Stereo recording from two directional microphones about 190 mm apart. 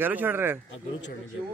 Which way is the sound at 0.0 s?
10° right (ahead or behind).